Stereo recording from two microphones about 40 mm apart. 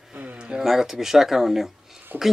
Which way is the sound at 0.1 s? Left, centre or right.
Right.